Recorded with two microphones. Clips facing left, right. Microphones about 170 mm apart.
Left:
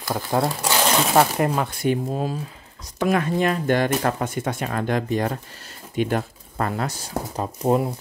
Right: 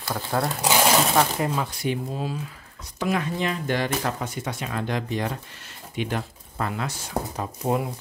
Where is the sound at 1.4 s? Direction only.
55° left (ahead or behind).